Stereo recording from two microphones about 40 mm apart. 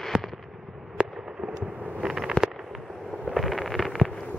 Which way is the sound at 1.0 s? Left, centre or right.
Right.